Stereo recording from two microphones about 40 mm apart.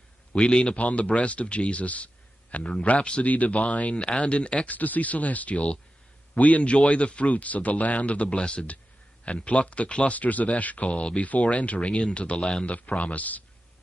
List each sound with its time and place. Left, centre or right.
0.3 s a man's voice: left
0.7 s a man's voice: left
3.3 s a man's voice: left
4.6 s speech: left
10.1 s a man's voice: left
12.6 s speech: left